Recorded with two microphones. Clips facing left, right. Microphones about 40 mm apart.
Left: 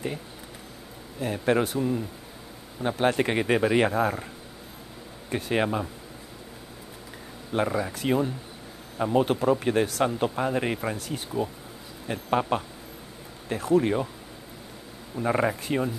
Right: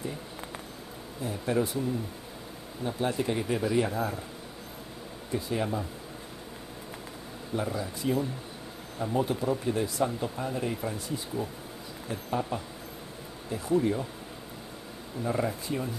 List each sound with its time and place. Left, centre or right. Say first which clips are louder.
1.2 s speech: left 5 dB; left
2.8 s speech: left 6 dB; left
5.3 s speech: left 5 dB; left
7.5 s speech: left 6 dB; left
15.2 s speech: left 5 dB; left